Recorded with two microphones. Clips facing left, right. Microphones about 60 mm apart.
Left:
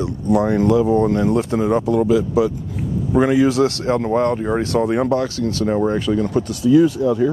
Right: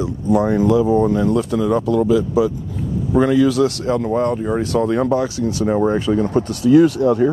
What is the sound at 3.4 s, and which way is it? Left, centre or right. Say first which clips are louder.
Speech: even; left.